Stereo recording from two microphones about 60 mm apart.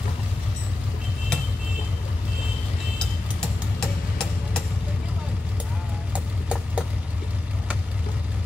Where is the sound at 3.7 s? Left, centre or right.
Centre.